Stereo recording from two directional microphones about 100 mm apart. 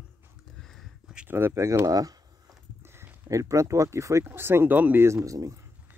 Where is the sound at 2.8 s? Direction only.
25° right (ahead or behind).